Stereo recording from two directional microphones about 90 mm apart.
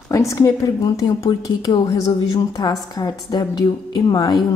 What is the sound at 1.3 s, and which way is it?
A woman's voice, 55° left (ahead or behind).